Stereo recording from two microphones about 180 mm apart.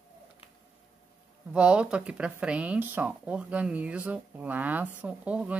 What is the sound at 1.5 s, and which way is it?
Speech, 5° right (ahead or behind).